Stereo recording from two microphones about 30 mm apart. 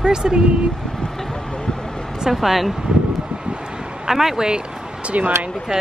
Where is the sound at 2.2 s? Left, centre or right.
Centre.